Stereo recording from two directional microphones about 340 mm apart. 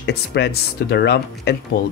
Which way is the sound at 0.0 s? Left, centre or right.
Left.